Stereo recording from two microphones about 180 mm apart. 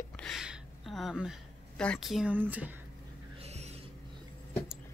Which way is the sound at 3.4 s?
35° right (ahead or behind).